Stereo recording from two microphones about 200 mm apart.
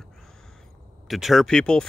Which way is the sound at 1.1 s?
Centre (ahead or behind).